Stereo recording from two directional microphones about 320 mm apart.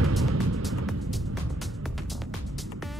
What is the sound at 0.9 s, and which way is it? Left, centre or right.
Music, centre.